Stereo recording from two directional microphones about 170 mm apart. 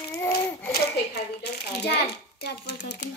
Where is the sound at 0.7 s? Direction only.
70° left (ahead or behind).